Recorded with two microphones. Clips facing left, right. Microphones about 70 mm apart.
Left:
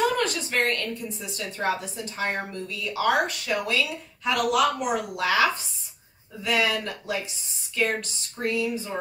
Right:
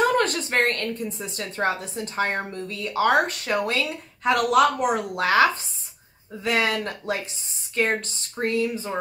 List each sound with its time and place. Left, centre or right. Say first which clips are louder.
0.2 s a woman's voice: right 3 dB; right